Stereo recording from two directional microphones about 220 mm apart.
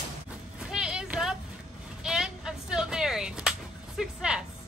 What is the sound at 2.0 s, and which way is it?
Whip, centre (ahead or behind).